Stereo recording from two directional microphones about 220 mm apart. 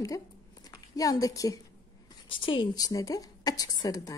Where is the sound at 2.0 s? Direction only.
25° left (ahead or behind).